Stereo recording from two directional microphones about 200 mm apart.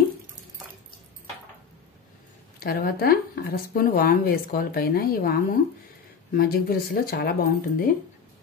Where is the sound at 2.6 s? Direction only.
50° left (ahead or behind).